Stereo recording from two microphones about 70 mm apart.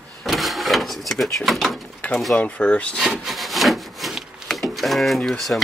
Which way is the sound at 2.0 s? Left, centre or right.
Left.